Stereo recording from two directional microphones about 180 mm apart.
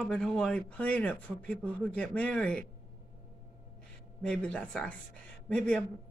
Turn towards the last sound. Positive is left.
turn(degrees=5)  # may be behind; listen again after turning